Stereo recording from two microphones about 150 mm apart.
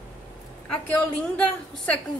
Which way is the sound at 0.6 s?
5° left (ahead or behind).